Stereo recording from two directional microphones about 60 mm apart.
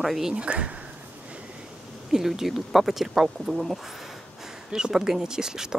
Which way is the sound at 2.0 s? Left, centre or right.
Centre.